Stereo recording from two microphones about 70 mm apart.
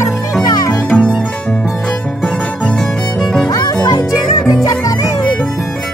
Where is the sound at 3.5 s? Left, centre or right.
Left.